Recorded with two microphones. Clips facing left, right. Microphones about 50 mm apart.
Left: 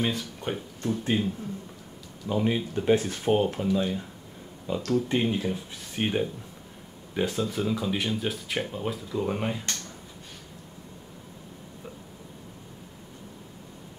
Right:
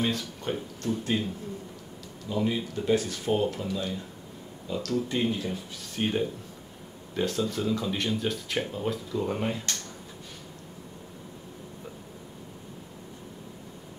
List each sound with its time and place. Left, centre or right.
0.0 s speech: centre
2.2 s speech: left; by 9.8 s centre